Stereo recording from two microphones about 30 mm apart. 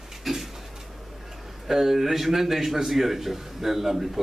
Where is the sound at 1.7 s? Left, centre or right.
Centre.